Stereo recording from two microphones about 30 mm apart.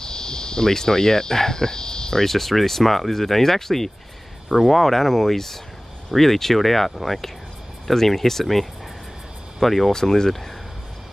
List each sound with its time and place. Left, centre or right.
0.0 s speech: left
2.2 s speech: centre
9.9 s speech: centre